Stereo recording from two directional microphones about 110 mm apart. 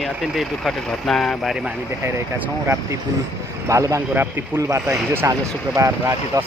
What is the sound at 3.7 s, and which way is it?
Speech, 30° right (ahead or behind).